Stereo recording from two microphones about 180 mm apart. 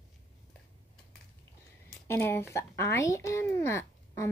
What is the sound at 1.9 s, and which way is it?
Speech, 15° left (ahead or behind).